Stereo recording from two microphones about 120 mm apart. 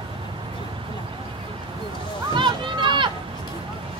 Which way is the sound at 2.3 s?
40° right (ahead or behind).